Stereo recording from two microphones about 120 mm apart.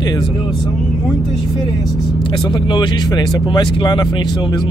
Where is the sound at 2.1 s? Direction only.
35° left (ahead or behind).